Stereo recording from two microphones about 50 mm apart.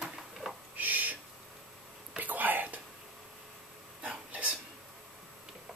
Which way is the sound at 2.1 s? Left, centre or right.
Right.